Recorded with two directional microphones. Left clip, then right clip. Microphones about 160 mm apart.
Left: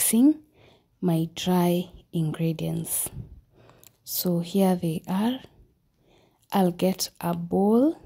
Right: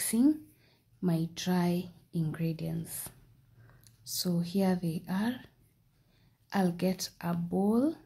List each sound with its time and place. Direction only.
0.0 s speech: 40° left (ahead or behind)
6.5 s speech: 45° left (ahead or behind)